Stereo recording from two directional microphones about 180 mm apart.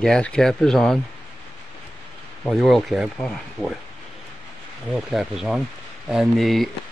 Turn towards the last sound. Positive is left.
turn(degrees=0)  # may be behind; listen again after turning